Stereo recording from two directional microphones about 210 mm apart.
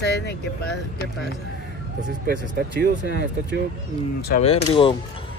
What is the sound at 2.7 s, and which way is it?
Speech, 50° right (ahead or behind).